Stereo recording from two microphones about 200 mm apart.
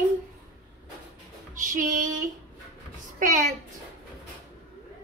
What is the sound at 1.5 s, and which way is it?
Music, 40° right (ahead or behind).